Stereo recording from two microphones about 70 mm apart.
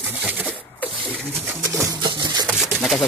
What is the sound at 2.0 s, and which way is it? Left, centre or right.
Rub, right.